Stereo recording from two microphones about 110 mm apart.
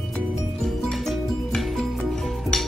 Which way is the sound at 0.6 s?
5° left (ahead or behind).